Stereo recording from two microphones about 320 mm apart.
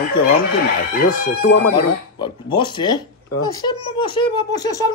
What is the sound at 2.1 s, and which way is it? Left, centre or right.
Speech, centre.